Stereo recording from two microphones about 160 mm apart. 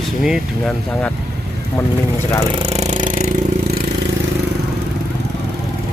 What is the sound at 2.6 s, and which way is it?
Jackhammer, 40° right (ahead or behind).